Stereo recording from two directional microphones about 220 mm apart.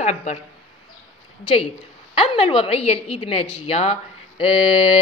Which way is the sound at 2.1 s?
25° left (ahead or behind).